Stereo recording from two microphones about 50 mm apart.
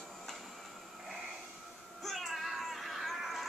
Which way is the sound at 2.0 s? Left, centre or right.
Centre.